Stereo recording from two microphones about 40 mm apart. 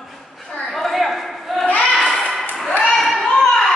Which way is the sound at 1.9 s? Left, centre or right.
Centre.